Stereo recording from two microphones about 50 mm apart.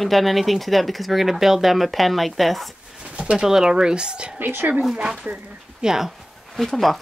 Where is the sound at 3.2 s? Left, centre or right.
Centre.